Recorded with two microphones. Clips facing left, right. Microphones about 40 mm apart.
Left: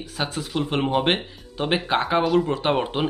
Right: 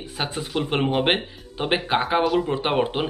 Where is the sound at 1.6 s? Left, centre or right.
Centre.